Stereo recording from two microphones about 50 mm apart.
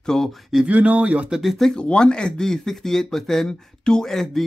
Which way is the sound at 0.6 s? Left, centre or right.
Right.